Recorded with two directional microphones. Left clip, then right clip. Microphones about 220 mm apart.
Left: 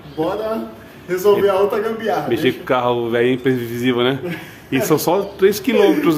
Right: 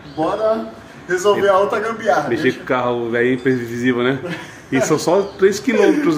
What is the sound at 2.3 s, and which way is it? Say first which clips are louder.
A man's voice: even; 15° left (ahead or behind).